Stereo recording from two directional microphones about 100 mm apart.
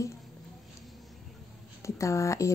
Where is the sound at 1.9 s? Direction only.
30° left (ahead or behind).